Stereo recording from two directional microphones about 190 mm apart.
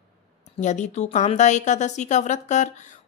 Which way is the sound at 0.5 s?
40° left (ahead or behind).